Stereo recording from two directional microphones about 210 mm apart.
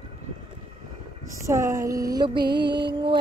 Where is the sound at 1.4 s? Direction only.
15° right (ahead or behind).